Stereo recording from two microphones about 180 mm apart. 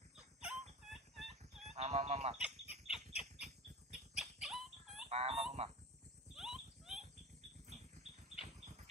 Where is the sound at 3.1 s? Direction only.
5° right (ahead or behind).